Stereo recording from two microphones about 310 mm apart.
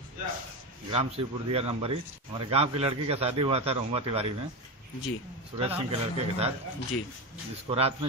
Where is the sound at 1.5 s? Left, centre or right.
Centre.